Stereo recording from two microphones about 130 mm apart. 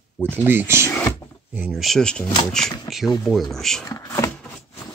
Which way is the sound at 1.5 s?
10° right (ahead or behind).